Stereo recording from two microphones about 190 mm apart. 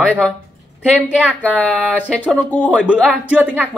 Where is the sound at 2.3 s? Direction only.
10° left (ahead or behind).